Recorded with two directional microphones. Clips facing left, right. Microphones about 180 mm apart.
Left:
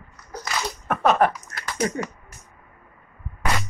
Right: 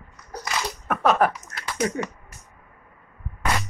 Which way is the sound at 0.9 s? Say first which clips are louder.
Left 1 dB; centre (ahead or behind).